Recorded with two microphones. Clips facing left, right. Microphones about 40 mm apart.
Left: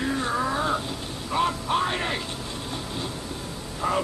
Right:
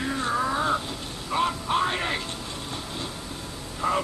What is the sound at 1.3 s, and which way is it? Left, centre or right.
Music, centre.